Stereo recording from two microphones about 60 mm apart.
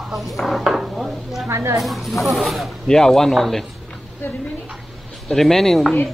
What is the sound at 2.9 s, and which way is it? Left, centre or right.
Speech, centre.